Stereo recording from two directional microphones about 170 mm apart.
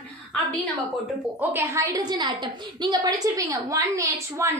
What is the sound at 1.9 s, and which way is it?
A woman's voice, 25° right (ahead or behind).